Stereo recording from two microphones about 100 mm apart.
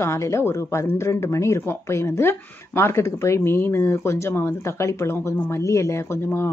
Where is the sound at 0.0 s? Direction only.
30° left (ahead or behind).